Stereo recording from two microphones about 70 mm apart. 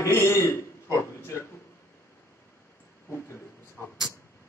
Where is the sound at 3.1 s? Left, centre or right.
Left.